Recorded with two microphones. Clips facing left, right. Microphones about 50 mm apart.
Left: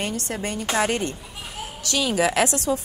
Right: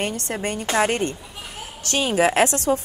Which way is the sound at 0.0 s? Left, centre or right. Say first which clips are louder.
Right 2 dB; right.